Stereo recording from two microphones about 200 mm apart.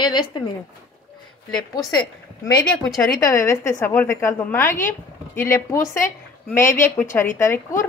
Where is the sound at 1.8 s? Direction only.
20° left (ahead or behind).